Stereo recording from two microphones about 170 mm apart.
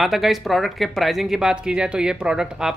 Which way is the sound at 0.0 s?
Centre (ahead or behind).